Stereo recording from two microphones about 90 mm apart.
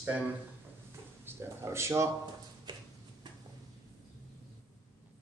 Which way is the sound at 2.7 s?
50° right (ahead or behind).